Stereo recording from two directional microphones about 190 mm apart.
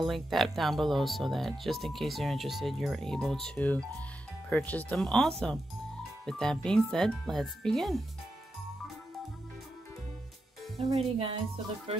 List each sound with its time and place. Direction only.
0.0 s speech: centre (ahead or behind)
10.8 s speech: 30° right (ahead or behind)